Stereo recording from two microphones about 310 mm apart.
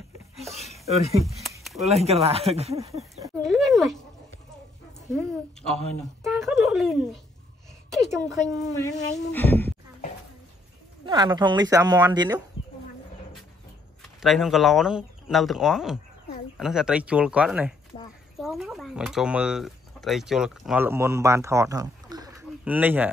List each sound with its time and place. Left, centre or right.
0.9 s speech: centre
1.2 s a sound: centre
1.9 s speech: centre
3.4 s speech: centre
5.7 s speech: centre
11.1 s speech: centre
14.0 s speech: centre